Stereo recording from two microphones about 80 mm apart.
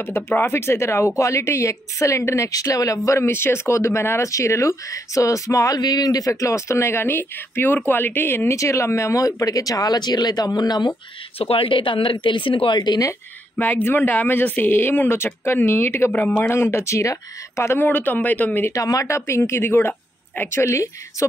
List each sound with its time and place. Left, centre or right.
0.0 s speech: left
3.1 s speech: left
5.8 s speech: left
11.7 s a woman's voice: left
13.6 s speech: left
17.7 s speech: left
18.7 s speech: left
20.6 s speech: left